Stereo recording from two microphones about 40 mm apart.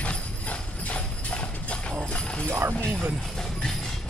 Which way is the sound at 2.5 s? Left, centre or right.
Right.